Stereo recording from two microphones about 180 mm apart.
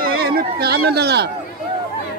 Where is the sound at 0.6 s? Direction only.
65° right (ahead or behind).